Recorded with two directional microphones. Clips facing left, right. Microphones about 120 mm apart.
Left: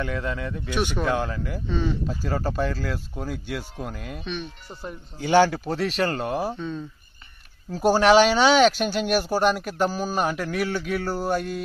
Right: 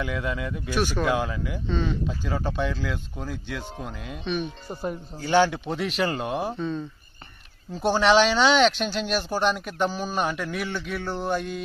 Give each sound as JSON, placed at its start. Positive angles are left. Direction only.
{"t": 0.0, "sound": "speech", "side_deg": 0}
{"t": 0.3, "sound": "speech", "side_deg": -15}
{"t": 0.7, "sound": "speech", "side_deg": 20}
{"t": 1.0, "sound": "speech", "side_deg": -10}
{"t": 1.7, "sound": "speech", "side_deg": 10}
{"t": 5.2, "sound": "speech", "side_deg": 10}
{"t": 5.5, "sound": "speech", "side_deg": 0}